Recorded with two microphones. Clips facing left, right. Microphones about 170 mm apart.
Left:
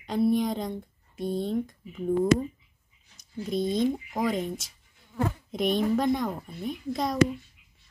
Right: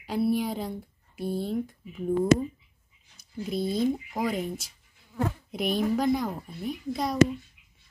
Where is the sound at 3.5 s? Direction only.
5° right (ahead or behind).